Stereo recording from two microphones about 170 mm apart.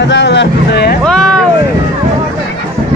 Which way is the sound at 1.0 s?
5° left (ahead or behind).